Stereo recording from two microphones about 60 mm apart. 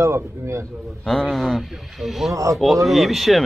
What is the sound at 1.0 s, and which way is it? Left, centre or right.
Speech, centre.